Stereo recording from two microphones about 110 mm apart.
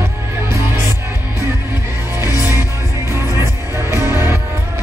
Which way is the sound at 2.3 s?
30° left (ahead or behind).